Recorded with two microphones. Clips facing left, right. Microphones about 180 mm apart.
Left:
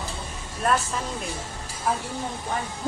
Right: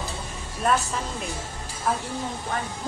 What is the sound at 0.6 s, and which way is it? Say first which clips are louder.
Speech: even; centre (ahead or behind).